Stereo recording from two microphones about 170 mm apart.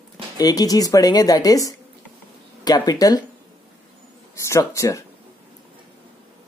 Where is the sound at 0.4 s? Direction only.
20° left (ahead or behind).